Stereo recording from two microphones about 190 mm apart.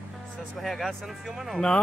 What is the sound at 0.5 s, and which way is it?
Speech, centre (ahead or behind).